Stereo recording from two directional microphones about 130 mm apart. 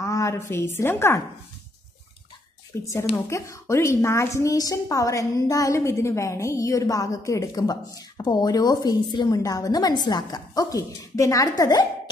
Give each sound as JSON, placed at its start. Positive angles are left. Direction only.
{"t": 0.0, "sound": "a woman's voice", "side_deg": 25}
{"t": 2.7, "sound": "a woman's voice", "side_deg": 20}